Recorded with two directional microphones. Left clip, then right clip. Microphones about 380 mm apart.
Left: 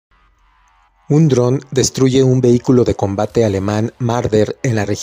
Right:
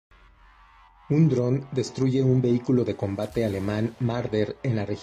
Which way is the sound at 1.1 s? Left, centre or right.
Left.